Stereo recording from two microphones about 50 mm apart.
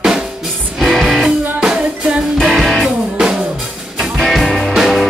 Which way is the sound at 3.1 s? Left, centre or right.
Centre.